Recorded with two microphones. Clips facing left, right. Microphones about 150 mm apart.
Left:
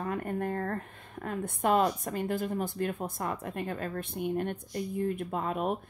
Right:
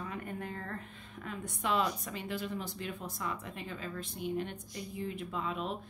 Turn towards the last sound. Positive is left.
turn(degrees=50)  # may be behind; listen again after turning